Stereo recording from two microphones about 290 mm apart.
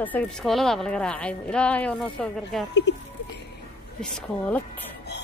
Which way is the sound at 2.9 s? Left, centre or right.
Left.